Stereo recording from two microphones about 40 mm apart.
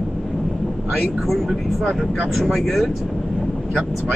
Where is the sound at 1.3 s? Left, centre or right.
Centre.